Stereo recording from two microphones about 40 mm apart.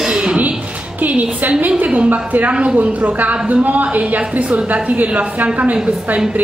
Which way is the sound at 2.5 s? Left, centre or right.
Right.